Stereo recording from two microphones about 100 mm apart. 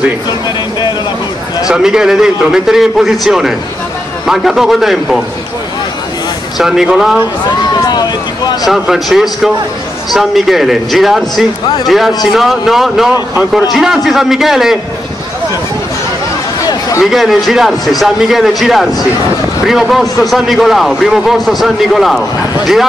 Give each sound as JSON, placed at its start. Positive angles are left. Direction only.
{"t": 0.3, "sound": "a sound", "side_deg": 45}
{"t": 1.7, "sound": "a man's voice", "side_deg": -5}
{"t": 6.6, "sound": "a man's voice", "side_deg": -5}
{"t": 7.7, "sound": "vehicle", "side_deg": 45}
{"t": 8.6, "sound": "a man's voice", "side_deg": -5}
{"t": 17.0, "sound": "a man's voice", "side_deg": 0}